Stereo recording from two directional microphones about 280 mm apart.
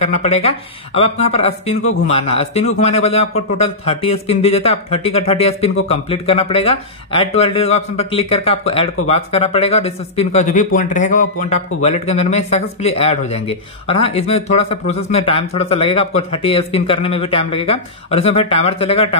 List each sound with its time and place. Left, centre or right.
0.0 s speech: left
1.8 s a man's voice: left
2.0 s speech: left